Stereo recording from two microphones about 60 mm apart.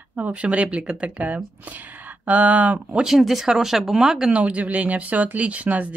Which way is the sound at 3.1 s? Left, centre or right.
Centre.